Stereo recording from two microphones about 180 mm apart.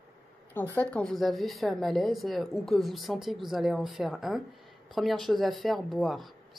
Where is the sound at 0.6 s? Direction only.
5° left (ahead or behind).